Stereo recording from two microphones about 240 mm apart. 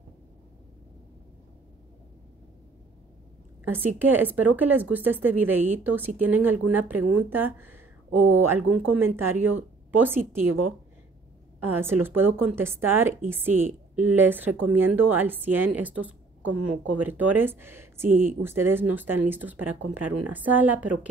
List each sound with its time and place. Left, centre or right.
3.6 s speech: centre
11.8 s speech: centre
20.0 s speech: right
20.3 s speech: centre